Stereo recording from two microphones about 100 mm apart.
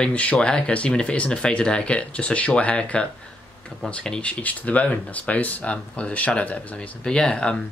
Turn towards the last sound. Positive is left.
turn(degrees=10)  # may be behind; listen again after turning